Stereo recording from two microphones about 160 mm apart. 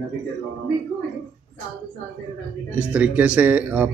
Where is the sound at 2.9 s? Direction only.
10° right (ahead or behind).